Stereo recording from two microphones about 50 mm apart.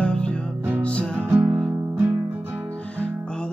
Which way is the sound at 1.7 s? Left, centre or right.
Right.